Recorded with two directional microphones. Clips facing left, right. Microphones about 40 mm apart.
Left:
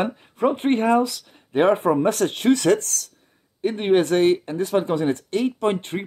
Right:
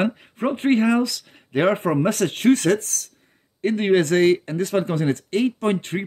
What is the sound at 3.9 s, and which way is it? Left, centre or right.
Speech, right.